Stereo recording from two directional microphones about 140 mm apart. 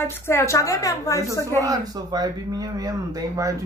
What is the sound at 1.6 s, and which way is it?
Speech, 25° right (ahead or behind).